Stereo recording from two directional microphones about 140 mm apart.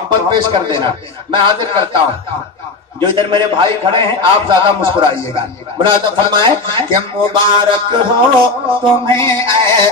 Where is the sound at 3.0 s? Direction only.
35° right (ahead or behind).